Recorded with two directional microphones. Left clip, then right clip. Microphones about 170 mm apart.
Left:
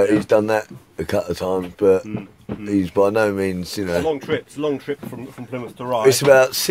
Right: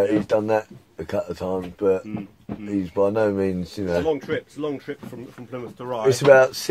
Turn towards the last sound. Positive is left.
turn(degrees=40)  # may be behind; listen again after turning